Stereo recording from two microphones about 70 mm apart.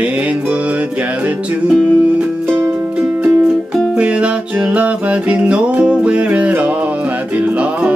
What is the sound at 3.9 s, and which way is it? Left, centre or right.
Music, centre.